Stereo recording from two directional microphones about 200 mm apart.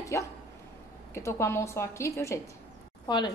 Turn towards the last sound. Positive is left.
turn(degrees=20)  # may be behind; listen again after turning